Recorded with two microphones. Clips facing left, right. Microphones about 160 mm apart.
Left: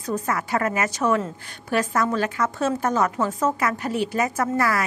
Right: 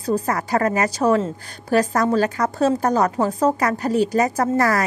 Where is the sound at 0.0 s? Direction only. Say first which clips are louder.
Right 4 dB; 35° right (ahead or behind).